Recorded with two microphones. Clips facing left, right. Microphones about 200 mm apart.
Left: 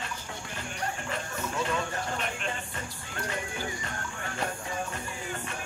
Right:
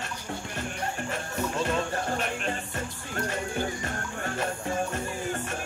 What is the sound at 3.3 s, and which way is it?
Music, 50° right (ahead or behind).